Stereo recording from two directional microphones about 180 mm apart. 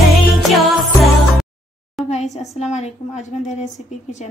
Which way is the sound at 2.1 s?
40° left (ahead or behind).